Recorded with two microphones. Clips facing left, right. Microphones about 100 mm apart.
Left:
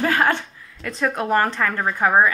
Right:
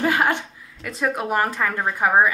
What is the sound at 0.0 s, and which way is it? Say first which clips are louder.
A woman's voice: left 1 dB; 15° right (ahead or behind).